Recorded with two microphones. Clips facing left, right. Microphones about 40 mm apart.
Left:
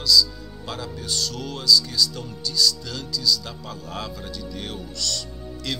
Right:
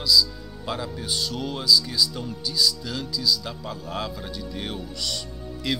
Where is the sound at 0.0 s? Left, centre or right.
Centre.